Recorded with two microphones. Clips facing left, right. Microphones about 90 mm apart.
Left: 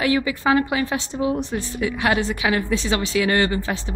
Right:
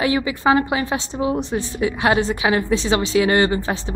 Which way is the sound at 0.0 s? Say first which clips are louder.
Right 2 dB; 20° right (ahead or behind).